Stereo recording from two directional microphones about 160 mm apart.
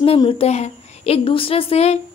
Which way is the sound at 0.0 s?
35° left (ahead or behind).